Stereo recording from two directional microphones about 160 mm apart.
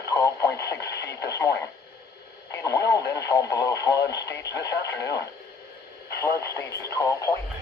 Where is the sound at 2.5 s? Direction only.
20° left (ahead or behind).